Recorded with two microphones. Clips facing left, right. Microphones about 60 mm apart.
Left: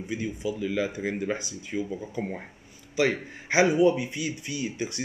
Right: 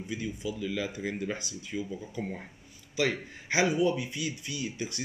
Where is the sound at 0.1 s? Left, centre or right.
Left.